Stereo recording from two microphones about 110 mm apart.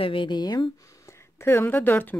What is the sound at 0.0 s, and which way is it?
Speech, 50° left (ahead or behind).